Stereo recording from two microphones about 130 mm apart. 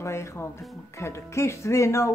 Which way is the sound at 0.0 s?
20° left (ahead or behind).